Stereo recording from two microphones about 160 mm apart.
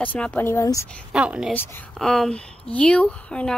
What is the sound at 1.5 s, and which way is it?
Speech, 15° left (ahead or behind).